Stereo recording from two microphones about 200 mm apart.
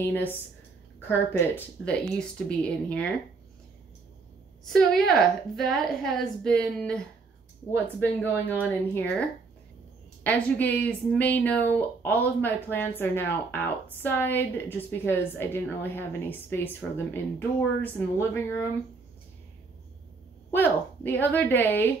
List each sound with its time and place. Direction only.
0.0 s a woman's voice: 10° left (ahead or behind)
1.9 s a woman's voice: 5° left (ahead or behind)
4.6 s a woman's voice: centre (ahead or behind)
10.2 s a woman's voice: 10° left (ahead or behind)
20.5 s a woman's voice: 10° left (ahead or behind)